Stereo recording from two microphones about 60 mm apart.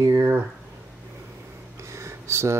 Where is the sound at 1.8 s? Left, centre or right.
Right.